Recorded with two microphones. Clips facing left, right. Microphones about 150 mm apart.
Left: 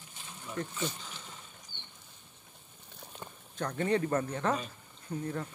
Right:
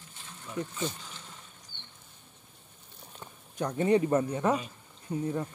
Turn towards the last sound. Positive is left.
turn(degrees=-10)  # may be behind; listen again after turning